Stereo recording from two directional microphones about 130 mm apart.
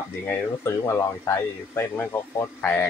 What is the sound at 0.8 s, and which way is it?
A man's voice, 20° left (ahead or behind).